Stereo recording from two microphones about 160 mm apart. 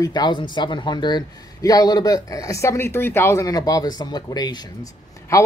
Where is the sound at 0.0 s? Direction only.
25° left (ahead or behind).